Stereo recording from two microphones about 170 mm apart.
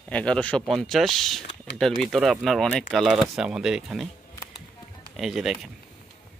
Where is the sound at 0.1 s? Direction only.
5° left (ahead or behind).